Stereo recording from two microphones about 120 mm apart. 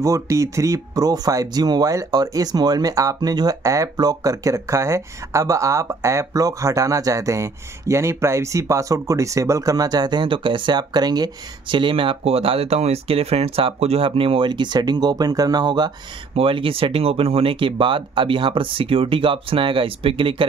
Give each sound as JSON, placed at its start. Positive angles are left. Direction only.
{"t": 0.0, "sound": "speech", "side_deg": -25}
{"t": 11.7, "sound": "speech", "side_deg": -45}
{"t": 16.3, "sound": "speech", "side_deg": -50}